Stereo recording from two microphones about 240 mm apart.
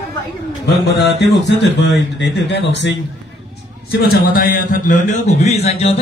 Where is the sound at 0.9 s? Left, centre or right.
Left.